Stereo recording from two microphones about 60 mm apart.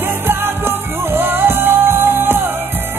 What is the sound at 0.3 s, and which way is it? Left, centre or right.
Music, right.